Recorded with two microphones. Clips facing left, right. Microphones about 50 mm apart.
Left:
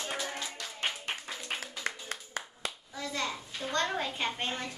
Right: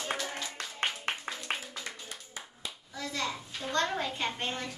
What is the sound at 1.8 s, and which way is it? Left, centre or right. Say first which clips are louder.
Clapping: left 5 dB; left.